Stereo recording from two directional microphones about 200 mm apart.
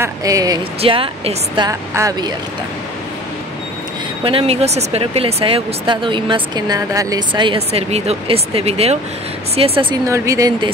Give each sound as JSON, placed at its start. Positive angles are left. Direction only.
{"t": 0.0, "sound": "a woman's voice", "side_deg": -15}
{"t": 1.7, "sound": "a woman's voice", "side_deg": -15}
{"t": 4.2, "sound": "speech", "side_deg": -25}
{"t": 10.0, "sound": "a woman's voice", "side_deg": -15}